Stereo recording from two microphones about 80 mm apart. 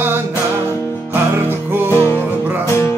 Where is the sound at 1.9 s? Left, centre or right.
Left.